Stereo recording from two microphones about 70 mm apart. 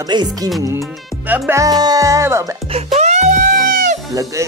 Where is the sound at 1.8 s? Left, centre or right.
Right.